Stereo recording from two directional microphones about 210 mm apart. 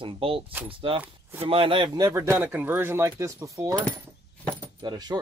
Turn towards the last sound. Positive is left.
turn(degrees=-20)  # may be behind; listen again after turning